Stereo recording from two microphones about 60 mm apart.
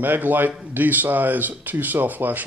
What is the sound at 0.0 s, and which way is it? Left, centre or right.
Speech, right.